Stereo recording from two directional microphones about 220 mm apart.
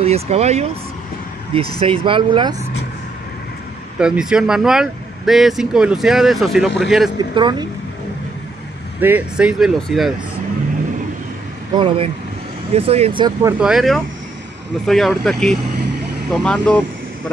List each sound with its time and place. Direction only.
0.0 s speech: 30° right (ahead or behind)
4.0 s speech: 5° right (ahead or behind)
7.2 s speech: 20° right (ahead or behind)
9.0 s speech: 5° right (ahead or behind)
11.7 s speech: 25° right (ahead or behind); by 16.8 s 5° left (ahead or behind)